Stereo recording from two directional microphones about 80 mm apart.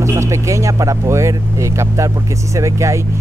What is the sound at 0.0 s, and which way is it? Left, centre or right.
Speech, right.